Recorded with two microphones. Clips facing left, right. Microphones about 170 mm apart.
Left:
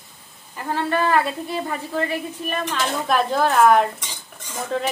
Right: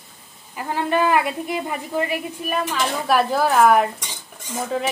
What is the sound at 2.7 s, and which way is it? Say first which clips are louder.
Speech: right 1 dB; centre (ahead or behind).